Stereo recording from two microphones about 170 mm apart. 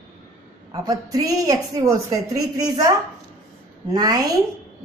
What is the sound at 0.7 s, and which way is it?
A woman's voice, 20° right (ahead or behind).